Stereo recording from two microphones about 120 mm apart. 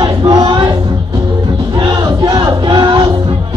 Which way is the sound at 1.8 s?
40° right (ahead or behind).